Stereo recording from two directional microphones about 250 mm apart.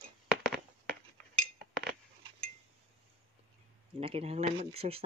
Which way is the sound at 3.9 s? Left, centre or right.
Right.